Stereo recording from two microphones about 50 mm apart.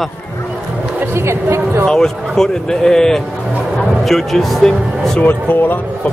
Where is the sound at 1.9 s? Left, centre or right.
Centre.